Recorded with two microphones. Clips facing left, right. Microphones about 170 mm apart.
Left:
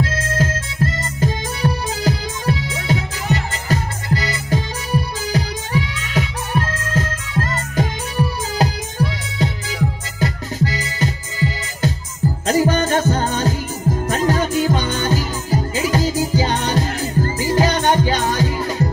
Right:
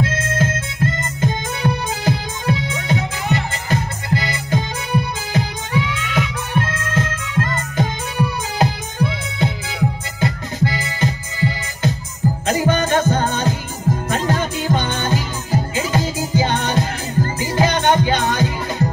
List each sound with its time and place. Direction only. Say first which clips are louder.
0.0 s music: even; 40° left (ahead or behind)